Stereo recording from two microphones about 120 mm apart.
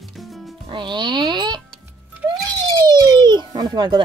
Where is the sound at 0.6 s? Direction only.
40° right (ahead or behind).